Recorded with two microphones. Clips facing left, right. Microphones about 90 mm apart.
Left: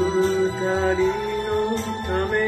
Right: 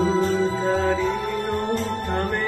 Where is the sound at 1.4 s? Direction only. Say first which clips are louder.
Left 1 dB; 45° right (ahead or behind).